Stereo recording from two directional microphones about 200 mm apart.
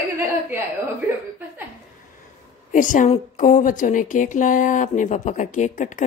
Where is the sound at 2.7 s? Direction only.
40° left (ahead or behind).